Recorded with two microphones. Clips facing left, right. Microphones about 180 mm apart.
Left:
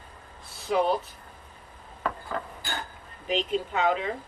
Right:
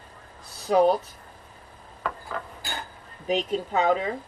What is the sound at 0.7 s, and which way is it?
Speech, 40° right (ahead or behind).